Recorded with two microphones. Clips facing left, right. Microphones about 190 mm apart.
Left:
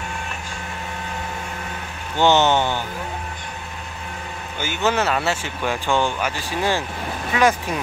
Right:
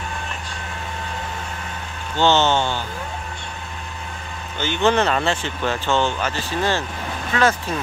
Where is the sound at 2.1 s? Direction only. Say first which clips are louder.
Left 1 dB; 15° left (ahead or behind).